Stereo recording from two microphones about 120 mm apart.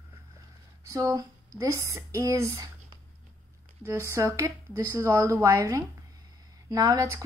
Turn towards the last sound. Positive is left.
turn(degrees=-30)  # may be behind; listen again after turning